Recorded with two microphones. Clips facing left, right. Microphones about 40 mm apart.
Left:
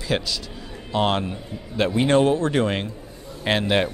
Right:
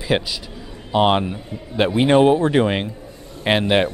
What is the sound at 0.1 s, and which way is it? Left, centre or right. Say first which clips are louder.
A man's voice: right 3 dB; right.